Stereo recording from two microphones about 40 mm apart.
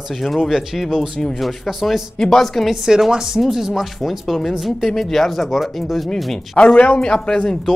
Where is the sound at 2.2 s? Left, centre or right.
Centre.